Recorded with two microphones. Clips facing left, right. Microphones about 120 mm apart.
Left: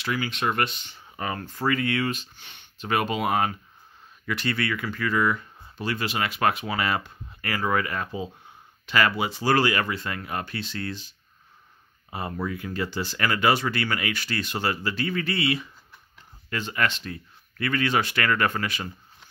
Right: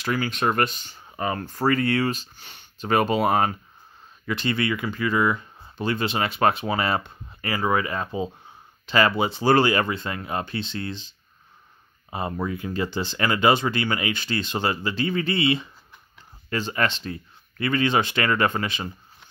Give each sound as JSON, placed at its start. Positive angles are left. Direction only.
{"t": 0.0, "sound": "speech", "side_deg": -45}
{"t": 4.3, "sound": "speech", "side_deg": -25}